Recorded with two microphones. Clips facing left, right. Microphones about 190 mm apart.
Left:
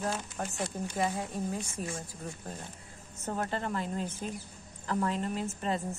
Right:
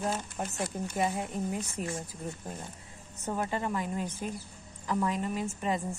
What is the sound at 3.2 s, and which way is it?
A woman's voice, 10° right (ahead or behind).